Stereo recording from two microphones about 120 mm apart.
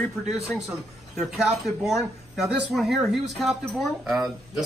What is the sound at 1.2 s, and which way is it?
A man's voice, centre (ahead or behind).